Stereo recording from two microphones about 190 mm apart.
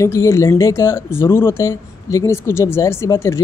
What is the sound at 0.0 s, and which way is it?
Speech, 15° left (ahead or behind).